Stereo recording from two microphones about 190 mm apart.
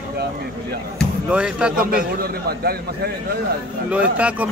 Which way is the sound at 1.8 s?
50° right (ahead or behind).